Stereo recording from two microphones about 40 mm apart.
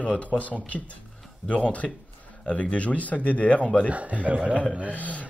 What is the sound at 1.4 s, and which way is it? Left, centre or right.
Speech, left.